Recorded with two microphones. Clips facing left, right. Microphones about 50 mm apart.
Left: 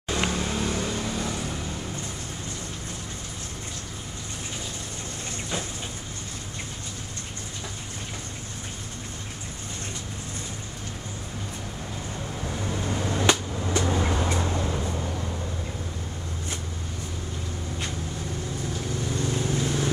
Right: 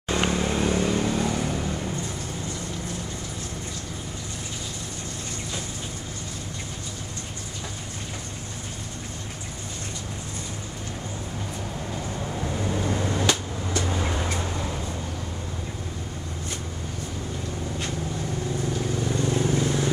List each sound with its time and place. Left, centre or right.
0.3 s vehicle: centre
12.4 s a sound: centre
13.7 s vehicle: centre
14.0 s vehicle: centre
19.0 s vehicle: centre